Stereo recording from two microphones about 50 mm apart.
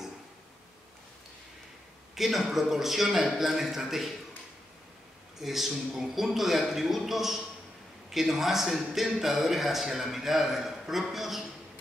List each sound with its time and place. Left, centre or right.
2.1 s a man's voice: centre
5.4 s a man's voice: centre